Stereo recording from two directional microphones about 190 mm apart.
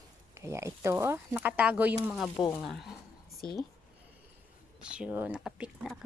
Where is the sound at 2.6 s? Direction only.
Centre (ahead or behind).